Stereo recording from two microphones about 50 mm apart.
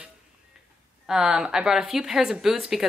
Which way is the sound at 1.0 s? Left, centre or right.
Centre.